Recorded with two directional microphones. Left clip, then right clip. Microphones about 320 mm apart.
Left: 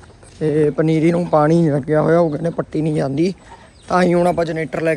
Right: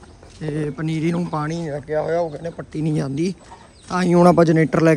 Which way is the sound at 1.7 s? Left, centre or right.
Left.